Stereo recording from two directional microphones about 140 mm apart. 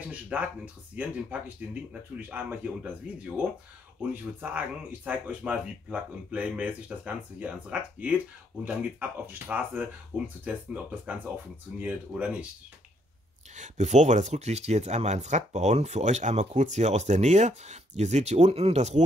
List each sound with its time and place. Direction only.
0.1 s a sound: 10° right (ahead or behind)
0.9 s speech: 10° right (ahead or behind)
13.6 s speech: 60° right (ahead or behind)